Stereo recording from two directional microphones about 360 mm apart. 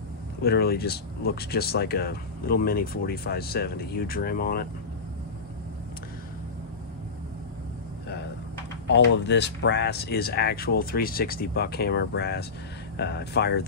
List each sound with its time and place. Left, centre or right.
0.4 s speech: left
8.8 s speech: left